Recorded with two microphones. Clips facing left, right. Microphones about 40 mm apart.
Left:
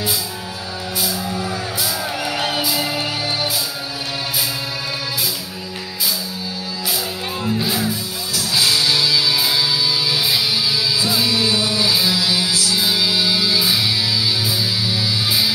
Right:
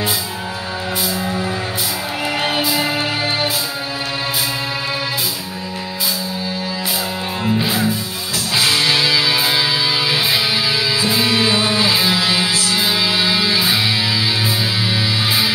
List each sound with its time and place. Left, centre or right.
2.2 s music: right
7.4 s music: right